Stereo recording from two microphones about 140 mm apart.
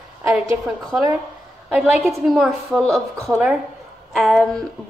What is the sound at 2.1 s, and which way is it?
Speech, centre (ahead or behind).